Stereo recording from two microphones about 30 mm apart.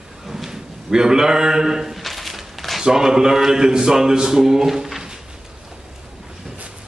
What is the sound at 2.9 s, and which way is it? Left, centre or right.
A man's voice, centre.